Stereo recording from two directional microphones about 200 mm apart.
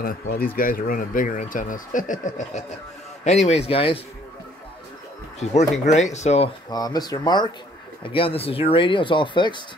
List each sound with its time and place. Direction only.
0.0 s speech: 45° left (ahead or behind); by 4.0 s 25° left (ahead or behind)
5.5 s speech: 35° left (ahead or behind)
6.7 s speech: 20° left (ahead or behind)